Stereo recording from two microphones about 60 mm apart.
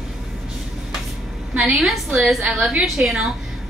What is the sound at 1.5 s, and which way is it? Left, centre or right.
A woman's voice, centre.